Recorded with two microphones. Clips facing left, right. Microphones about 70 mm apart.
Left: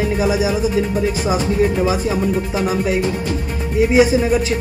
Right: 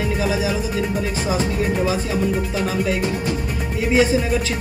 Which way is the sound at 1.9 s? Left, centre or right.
Left.